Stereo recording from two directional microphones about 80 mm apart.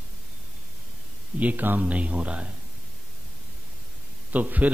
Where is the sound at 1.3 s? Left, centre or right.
Centre.